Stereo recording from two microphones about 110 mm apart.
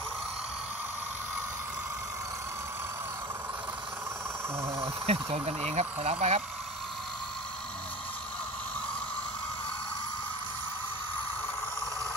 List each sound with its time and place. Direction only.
5.0 s speech: 65° right (ahead or behind)